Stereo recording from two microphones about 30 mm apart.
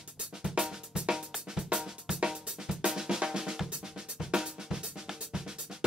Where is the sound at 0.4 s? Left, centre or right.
Centre.